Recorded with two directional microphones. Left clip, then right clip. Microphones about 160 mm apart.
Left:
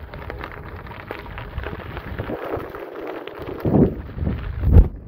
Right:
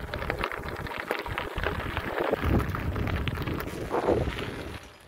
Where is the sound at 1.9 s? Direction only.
40° left (ahead or behind).